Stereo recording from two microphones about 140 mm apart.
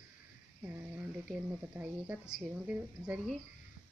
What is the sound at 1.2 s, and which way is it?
A woman's voice, 10° right (ahead or behind).